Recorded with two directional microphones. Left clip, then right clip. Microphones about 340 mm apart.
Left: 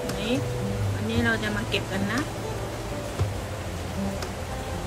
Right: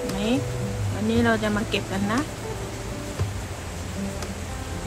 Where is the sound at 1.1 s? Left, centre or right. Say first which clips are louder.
Right 4 dB; centre.